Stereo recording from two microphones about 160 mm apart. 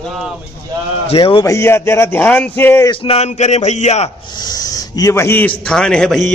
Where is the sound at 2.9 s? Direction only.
35° left (ahead or behind).